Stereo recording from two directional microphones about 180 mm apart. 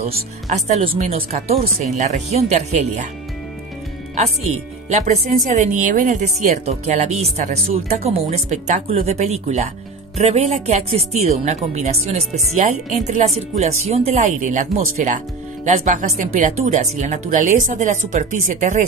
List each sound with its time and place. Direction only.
0.0 s speech: 35° right (ahead or behind)
4.2 s speech: 40° right (ahead or behind)